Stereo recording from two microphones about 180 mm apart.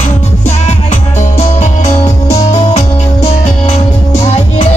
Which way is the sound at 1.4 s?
40° left (ahead or behind).